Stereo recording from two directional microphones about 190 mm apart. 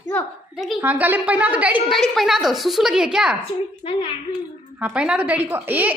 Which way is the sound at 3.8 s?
25° left (ahead or behind).